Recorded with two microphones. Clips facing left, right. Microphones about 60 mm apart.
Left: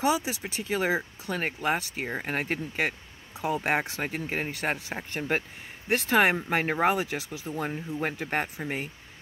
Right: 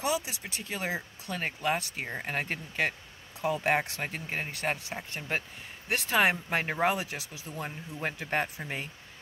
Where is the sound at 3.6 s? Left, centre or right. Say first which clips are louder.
Left 1 dB; left.